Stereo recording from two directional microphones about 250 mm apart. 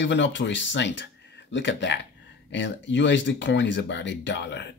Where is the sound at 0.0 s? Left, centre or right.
Left.